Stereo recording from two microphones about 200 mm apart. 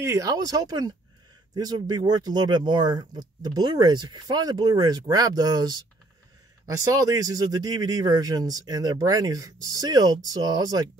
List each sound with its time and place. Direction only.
0.0 s speech: 15° right (ahead or behind)